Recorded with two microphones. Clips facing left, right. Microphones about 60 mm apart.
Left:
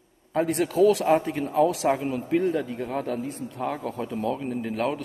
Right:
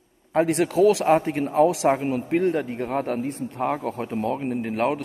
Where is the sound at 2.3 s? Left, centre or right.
Right.